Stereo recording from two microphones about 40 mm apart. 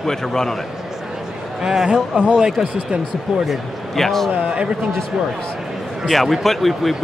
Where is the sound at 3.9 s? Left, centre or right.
Centre.